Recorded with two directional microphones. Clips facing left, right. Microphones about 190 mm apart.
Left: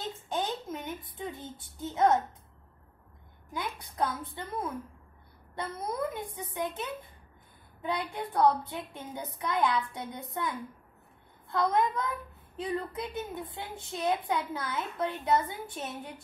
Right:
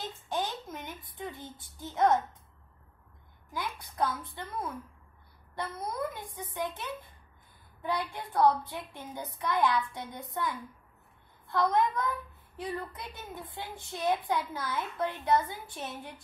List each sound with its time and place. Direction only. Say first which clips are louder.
0.3 s a sound: left 1 dB; 25° left (ahead or behind)
3.5 s a woman's voice: left 1 dB; 20° left (ahead or behind)
11.5 s a woman's voice: even; 25° left (ahead or behind)